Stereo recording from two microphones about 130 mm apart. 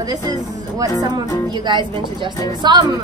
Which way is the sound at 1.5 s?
35° right (ahead or behind).